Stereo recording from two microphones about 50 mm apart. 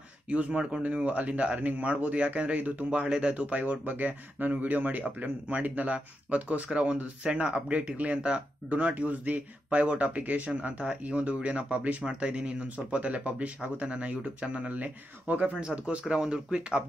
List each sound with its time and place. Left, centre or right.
0.3 s speech: right
0.8 s speech: right
2.9 s speech: centre